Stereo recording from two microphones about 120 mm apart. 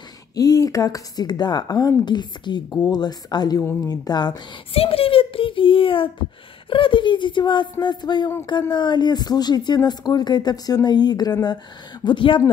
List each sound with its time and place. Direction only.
0.4 s a woman's voice: 30° left (ahead or behind)
4.7 s a child's voice: 50° left (ahead or behind)